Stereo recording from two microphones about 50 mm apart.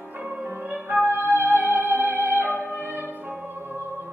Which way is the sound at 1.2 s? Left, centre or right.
Right.